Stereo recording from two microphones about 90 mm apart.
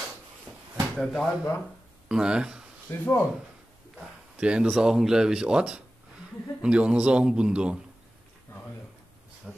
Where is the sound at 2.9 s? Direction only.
25° left (ahead or behind).